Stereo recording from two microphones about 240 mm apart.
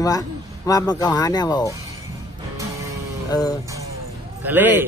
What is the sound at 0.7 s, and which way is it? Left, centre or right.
Speech, centre.